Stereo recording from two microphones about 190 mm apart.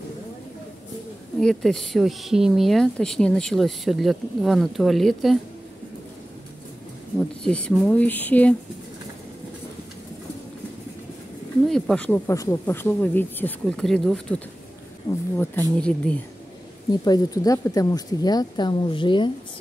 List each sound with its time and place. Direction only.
1.4 s speech: centre (ahead or behind)
7.2 s speech: 5° left (ahead or behind)
11.6 s speech: 5° left (ahead or behind)
15.3 s speech: 10° left (ahead or behind)
17.0 s a woman's voice: 20° left (ahead or behind)